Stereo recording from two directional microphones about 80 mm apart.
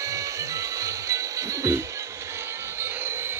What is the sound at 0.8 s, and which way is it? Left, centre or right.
Music, right.